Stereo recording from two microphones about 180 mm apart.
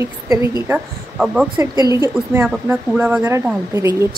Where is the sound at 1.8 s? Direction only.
15° right (ahead or behind).